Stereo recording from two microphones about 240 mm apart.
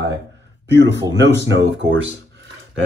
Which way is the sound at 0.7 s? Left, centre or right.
Right.